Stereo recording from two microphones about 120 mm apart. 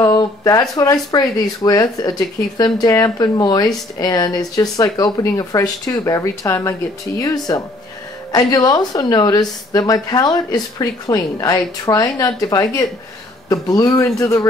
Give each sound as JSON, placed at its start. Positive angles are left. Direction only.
{"t": 0.0, "sound": "speech", "side_deg": 30}